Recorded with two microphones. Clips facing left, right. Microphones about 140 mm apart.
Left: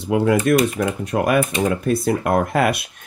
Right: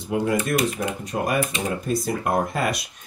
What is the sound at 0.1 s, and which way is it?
Speech, 70° left (ahead or behind).